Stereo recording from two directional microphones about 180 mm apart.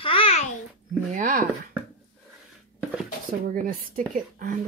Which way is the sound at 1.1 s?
50° right (ahead or behind).